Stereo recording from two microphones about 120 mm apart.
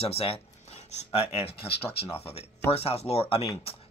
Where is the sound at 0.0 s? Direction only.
55° left (ahead or behind).